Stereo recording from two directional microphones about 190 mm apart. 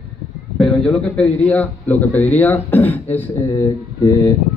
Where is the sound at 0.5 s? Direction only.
5° left (ahead or behind).